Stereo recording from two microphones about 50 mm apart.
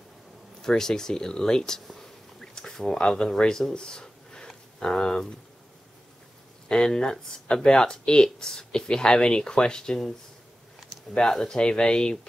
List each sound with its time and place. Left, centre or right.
0.6 s speech: centre
1.9 s a sound: centre
6.7 s speech: centre
11.1 s speech: centre